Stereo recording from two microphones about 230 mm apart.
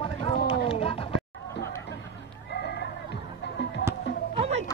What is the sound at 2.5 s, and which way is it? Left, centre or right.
Chicken, left.